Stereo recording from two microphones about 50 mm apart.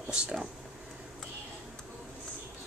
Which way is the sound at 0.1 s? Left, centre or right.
Centre.